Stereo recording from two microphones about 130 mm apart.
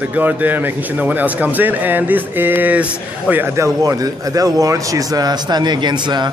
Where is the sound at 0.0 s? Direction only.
15° right (ahead or behind).